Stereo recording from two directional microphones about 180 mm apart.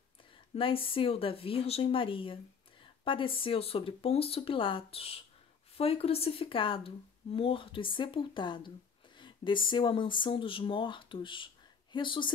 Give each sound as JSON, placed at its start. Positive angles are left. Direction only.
{"t": 0.6, "sound": "speech", "side_deg": 30}